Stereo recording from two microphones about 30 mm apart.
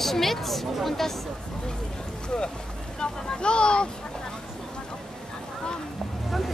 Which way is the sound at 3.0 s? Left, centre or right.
Left.